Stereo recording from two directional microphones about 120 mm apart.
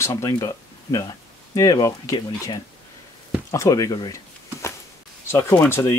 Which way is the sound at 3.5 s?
25° left (ahead or behind).